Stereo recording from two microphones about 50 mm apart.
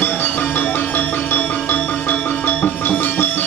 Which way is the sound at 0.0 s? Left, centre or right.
Left.